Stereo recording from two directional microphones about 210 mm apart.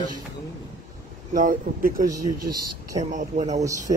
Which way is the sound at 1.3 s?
40° right (ahead or behind).